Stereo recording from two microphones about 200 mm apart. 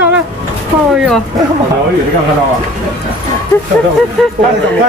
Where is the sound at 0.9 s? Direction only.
5° right (ahead or behind).